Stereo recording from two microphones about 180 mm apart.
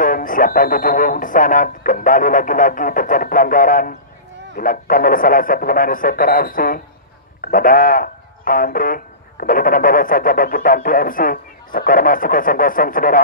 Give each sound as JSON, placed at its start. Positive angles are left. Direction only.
{"t": 0.0, "sound": "speech", "side_deg": 50}